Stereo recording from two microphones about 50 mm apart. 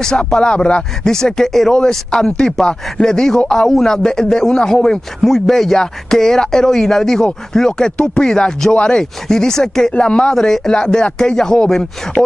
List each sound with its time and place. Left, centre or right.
0.3 s speech: centre
10.3 s speech: centre